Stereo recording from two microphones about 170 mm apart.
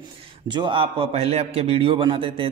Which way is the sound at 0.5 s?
30° right (ahead or behind).